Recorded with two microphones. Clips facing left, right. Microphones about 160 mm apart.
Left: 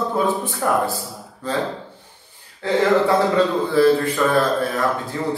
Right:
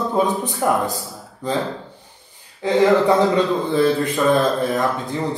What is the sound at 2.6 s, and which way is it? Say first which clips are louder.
Speech: right 2 dB; 15° right (ahead or behind).